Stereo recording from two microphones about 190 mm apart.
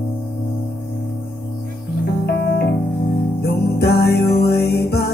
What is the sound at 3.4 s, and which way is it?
Music, 60° left (ahead or behind).